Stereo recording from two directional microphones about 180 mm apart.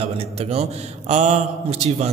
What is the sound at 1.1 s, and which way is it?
Speech, 40° right (ahead or behind).